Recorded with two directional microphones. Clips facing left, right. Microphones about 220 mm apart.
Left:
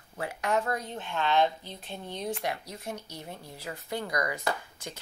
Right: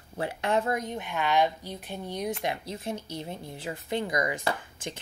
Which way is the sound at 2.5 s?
25° right (ahead or behind).